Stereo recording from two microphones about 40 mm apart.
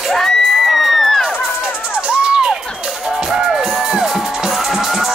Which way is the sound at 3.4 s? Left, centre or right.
Centre.